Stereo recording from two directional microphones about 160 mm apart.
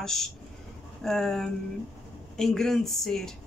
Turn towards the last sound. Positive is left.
turn(degrees=5)  # may be behind; listen again after turning